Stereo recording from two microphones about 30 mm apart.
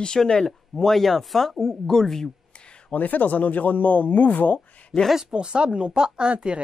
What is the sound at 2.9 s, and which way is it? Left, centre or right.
Speech, left.